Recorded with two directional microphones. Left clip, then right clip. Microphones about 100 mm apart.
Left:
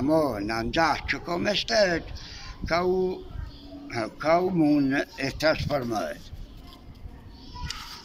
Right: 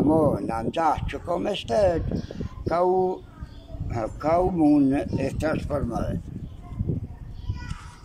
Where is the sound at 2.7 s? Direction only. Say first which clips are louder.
Right 3 dB; 25° right (ahead or behind).